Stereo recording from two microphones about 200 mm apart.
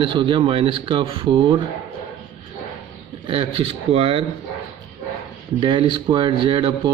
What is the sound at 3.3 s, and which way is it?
Speech, 25° right (ahead or behind).